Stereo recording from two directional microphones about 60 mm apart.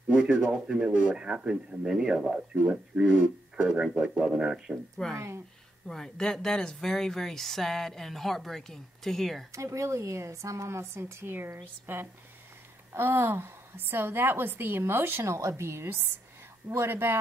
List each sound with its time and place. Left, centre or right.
0.1 s a sound: right
0.5 s speech: centre
5.1 s a woman's voice: right
5.9 s speech: centre
9.5 s a woman's voice: right
15.2 s a woman's voice: right